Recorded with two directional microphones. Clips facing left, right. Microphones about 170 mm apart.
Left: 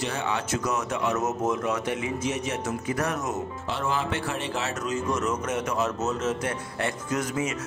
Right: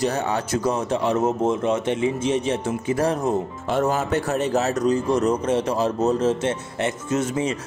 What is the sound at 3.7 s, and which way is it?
A man's voice, 45° right (ahead or behind).